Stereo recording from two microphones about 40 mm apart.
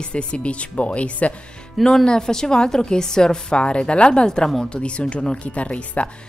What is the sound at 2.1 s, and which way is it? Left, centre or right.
Speech, centre.